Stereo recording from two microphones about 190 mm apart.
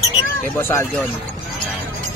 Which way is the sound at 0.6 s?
10° left (ahead or behind).